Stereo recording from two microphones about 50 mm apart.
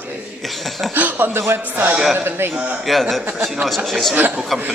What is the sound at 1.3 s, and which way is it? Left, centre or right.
Music, right.